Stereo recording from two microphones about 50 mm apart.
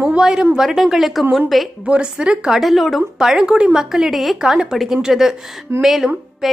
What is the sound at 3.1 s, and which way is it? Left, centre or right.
A woman's voice, centre.